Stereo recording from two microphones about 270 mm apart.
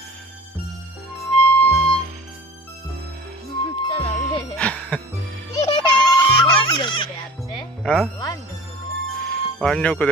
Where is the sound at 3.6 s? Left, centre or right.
Left.